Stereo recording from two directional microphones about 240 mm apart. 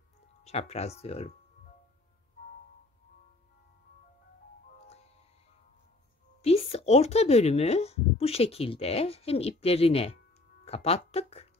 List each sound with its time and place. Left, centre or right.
0.5 s speech: left
6.4 s speech: left